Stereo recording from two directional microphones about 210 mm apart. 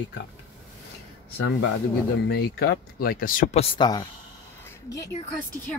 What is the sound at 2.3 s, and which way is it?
Speech, 50° left (ahead or behind).